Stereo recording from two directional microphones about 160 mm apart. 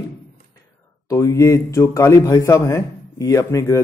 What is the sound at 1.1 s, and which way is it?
A man's voice, 20° left (ahead or behind).